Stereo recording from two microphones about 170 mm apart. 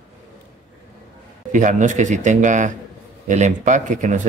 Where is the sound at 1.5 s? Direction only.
45° right (ahead or behind).